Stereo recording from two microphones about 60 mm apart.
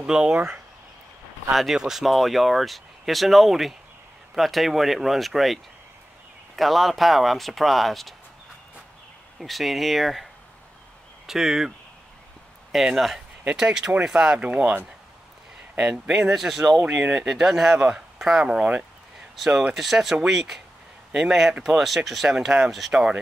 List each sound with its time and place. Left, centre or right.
0.0 s speech: centre
1.5 s speech: centre
9.4 s speech: centre
12.7 s speech: centre; by 14.8 s right
16.3 s speech: centre
16.8 s speech: right
17.3 s speech: centre
19.3 s speech: centre